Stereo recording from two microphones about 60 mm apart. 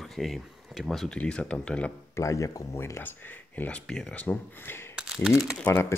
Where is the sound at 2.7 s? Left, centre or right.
Left.